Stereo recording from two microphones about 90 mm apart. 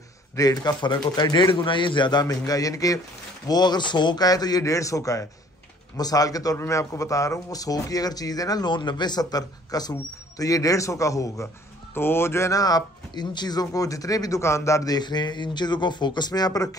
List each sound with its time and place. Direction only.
0.4 s speech: 45° left (ahead or behind)
0.8 s a man's voice: 55° left (ahead or behind); by 3.0 s 40° left (ahead or behind)
3.4 s speech: 50° left (ahead or behind)
11.9 s speech: 25° left (ahead or behind)
15.0 s a man's voice: 55° left (ahead or behind)